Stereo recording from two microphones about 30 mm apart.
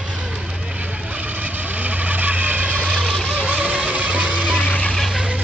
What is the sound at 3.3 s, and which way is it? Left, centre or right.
Music, right.